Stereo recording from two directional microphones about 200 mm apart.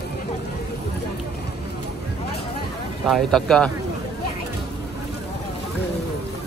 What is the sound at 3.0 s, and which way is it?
Speech, centre (ahead or behind).